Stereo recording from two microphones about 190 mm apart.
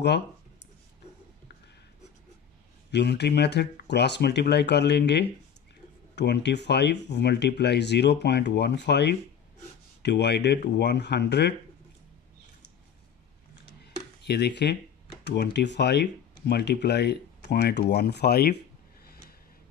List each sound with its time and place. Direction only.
2.9 s speech: 65° left (ahead or behind)
14.2 s speech: 60° left (ahead or behind)